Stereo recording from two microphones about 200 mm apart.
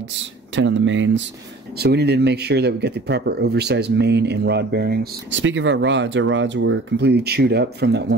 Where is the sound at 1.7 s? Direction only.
55° right (ahead or behind).